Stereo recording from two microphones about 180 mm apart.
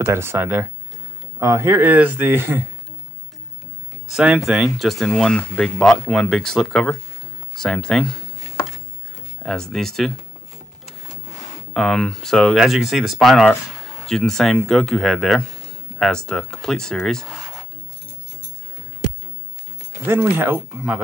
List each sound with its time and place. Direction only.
0.0 s speech: 15° right (ahead or behind)
4.1 s speech: 5° right (ahead or behind)
7.5 s a sound: 5° left (ahead or behind)
9.4 s speech: centre (ahead or behind)
11.7 s speech: 5° left (ahead or behind)
20.1 s speech: 10° right (ahead or behind)